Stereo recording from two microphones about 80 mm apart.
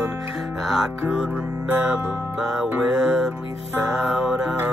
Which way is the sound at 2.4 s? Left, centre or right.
Centre.